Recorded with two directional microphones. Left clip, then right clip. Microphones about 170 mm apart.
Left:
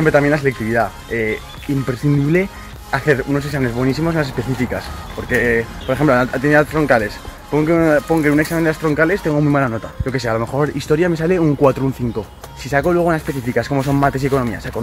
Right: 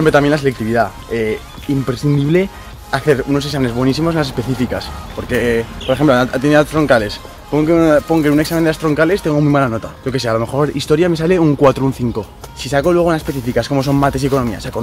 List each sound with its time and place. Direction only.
0.0 s speech: 10° right (ahead or behind)